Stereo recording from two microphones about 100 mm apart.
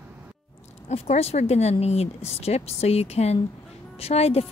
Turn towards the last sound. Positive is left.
turn(degrees=90)